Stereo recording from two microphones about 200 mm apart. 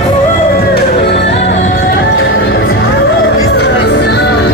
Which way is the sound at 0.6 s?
55° left (ahead or behind).